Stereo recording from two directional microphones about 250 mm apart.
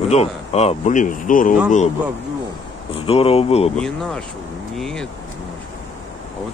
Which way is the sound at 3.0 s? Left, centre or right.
Left.